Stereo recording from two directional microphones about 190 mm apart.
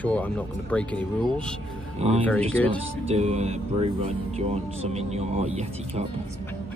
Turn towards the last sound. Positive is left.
turn(degrees=-35)  # may be behind; listen again after turning